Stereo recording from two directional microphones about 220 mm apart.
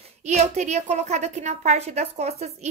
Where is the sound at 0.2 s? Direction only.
30° right (ahead or behind).